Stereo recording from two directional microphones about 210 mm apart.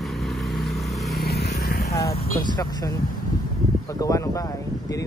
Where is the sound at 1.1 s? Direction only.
50° left (ahead or behind).